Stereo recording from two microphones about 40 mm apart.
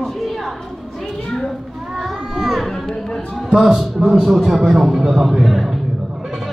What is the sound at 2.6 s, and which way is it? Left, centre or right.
Speech, centre.